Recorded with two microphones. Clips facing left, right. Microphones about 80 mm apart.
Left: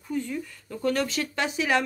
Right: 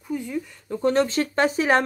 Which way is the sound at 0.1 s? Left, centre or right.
Centre.